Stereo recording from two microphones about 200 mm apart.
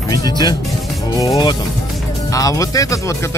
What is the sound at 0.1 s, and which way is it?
Speech, 20° left (ahead or behind).